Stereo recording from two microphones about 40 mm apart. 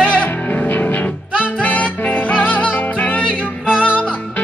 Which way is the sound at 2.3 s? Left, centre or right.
Left.